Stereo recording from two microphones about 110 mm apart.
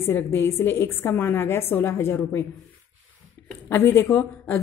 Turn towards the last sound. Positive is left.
turn(degrees=15)  # may be behind; listen again after turning